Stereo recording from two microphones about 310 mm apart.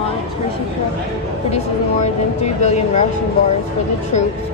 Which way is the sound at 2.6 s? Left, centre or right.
Left.